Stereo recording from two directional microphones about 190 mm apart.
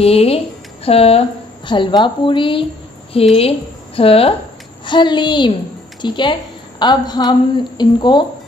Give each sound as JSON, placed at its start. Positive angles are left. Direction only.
{"t": 0.0, "sound": "a woman's voice", "side_deg": 30}